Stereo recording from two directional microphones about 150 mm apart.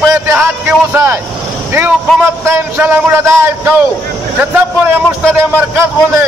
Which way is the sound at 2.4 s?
15° right (ahead or behind).